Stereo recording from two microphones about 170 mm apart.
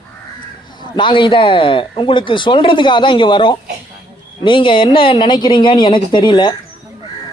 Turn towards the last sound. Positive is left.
turn(degrees=25)  # may be behind; listen again after turning